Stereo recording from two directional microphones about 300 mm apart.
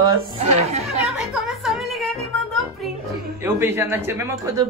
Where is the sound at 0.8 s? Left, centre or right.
Centre.